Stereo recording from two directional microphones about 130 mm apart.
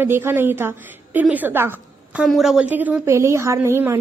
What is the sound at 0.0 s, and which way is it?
A woman's voice, 15° right (ahead or behind).